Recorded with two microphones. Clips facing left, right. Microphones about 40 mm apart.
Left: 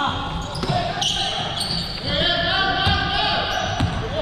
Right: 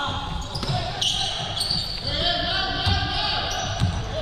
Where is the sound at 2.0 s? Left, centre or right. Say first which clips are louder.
Left 5 dB; left.